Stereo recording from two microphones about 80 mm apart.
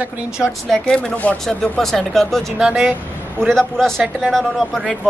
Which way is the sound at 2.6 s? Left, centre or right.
Centre.